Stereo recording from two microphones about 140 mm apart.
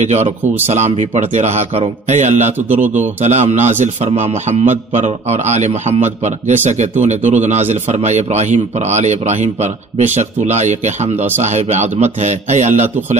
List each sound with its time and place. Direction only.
0.0 s a man's voice: 50° right (ahead or behind)